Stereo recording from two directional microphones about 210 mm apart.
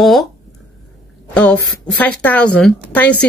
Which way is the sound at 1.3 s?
5° left (ahead or behind).